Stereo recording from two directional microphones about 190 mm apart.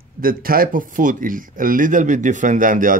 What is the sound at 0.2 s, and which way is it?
Speech, 50° right (ahead or behind).